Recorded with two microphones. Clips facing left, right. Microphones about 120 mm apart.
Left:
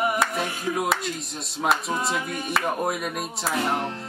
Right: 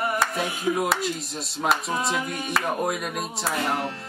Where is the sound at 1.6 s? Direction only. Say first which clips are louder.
Even; centre (ahead or behind).